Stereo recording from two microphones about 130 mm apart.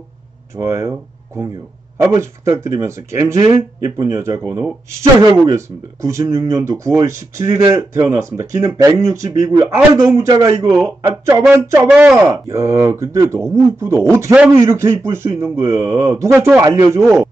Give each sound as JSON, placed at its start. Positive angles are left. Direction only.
{"t": 0.6, "sound": "a man's voice", "side_deg": -20}
{"t": 12.3, "sound": "a man's voice", "side_deg": -25}